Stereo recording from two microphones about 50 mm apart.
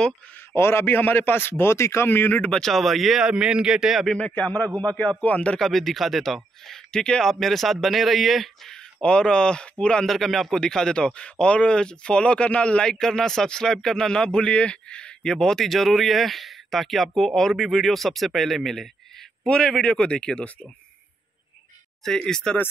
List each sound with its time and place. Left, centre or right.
0.6 s a man's voice: left
0.8 s a man's voice: left
2.0 s speech: left
2.6 s speech: centre
3.3 s a man's voice: centre
4.2 s a man's voice: left
5.6 s speech: centre
8.6 s speech: centre
10.0 s speech: centre
10.6 s speech: centre
19.4 s speech: centre
22.0 s speech: centre